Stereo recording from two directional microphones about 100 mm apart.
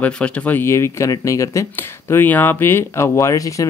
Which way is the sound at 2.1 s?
20° left (ahead or behind).